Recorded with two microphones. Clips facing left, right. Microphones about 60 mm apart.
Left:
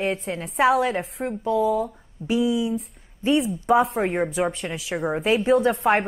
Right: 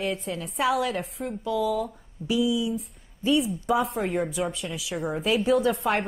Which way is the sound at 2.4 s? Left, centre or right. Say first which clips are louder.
Left 3 dB; left.